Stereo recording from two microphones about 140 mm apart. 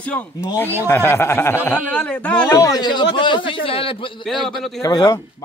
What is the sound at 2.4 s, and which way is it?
A man's voice, 25° left (ahead or behind).